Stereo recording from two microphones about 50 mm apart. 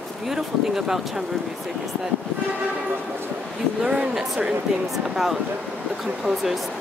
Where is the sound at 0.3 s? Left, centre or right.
Centre.